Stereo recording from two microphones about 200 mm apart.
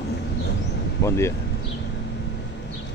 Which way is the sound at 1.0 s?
15° left (ahead or behind).